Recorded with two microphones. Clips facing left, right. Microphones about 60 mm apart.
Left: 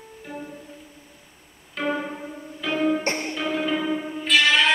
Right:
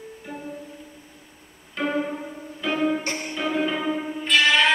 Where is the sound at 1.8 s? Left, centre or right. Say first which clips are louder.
Right 1 dB; centre.